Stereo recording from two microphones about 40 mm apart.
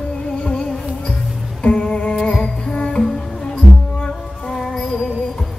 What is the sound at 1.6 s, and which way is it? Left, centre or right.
Music, left.